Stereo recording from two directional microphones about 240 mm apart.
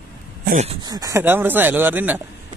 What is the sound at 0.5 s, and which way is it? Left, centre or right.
Speech, right.